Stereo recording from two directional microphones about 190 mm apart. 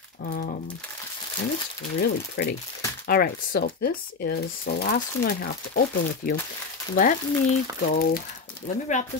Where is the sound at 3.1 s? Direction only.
50° left (ahead or behind).